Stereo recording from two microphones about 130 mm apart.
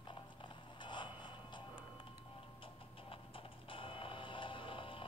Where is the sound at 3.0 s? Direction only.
40° left (ahead or behind).